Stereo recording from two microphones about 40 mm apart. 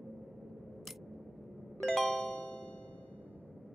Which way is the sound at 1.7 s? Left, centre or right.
Centre.